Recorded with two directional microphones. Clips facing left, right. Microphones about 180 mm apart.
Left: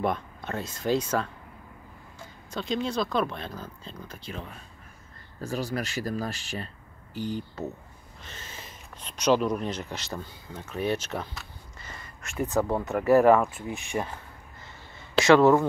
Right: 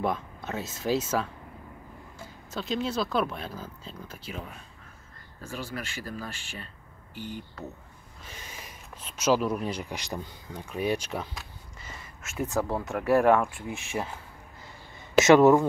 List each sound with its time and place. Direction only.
0.0 s speech: centre (ahead or behind)
5.4 s speech: 40° left (ahead or behind)
8.2 s speech: 10° right (ahead or behind)
15.1 s speech: 20° right (ahead or behind)